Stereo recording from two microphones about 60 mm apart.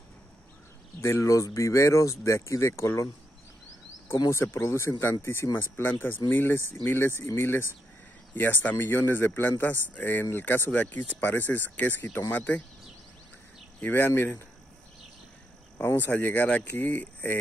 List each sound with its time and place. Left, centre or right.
1.2 s speech: left
4.1 s speech: left
13.9 s speech: left
15.8 s speech: left